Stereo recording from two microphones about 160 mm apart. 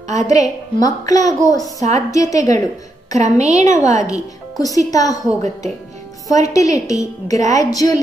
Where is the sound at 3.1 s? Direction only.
45° right (ahead or behind).